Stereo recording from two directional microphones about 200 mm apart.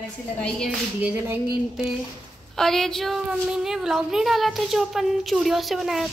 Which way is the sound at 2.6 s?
Centre (ahead or behind).